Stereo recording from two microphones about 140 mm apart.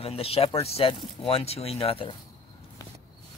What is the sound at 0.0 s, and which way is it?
Speech, 45° left (ahead or behind).